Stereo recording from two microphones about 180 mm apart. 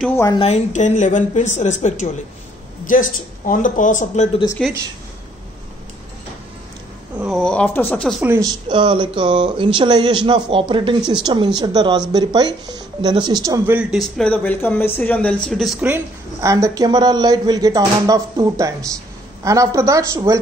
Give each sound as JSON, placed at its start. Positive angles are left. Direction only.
{"t": 0.4, "sound": "a woman's voice", "side_deg": 40}
{"t": 4.6, "sound": "speech", "side_deg": 0}
{"t": 7.2, "sound": "speech", "side_deg": 0}
{"t": 8.2, "sound": "a woman's voice", "side_deg": -15}
{"t": 13.7, "sound": "speech", "side_deg": -5}
{"t": 14.1, "sound": "a woman's voice", "side_deg": 5}